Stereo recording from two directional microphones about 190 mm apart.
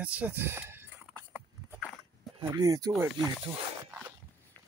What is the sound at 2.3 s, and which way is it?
Speech, 20° right (ahead or behind).